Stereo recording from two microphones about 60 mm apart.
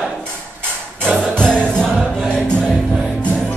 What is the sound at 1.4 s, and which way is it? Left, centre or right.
Music, centre.